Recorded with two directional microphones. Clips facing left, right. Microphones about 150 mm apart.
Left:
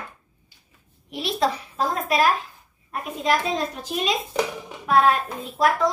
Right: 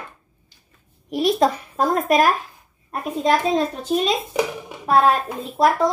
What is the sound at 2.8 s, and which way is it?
A child's voice, 35° right (ahead or behind).